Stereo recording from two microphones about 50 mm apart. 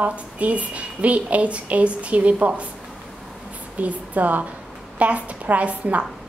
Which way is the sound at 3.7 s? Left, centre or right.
Right.